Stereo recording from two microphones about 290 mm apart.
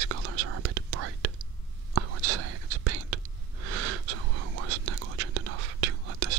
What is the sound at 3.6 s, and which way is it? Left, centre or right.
Gasp, right.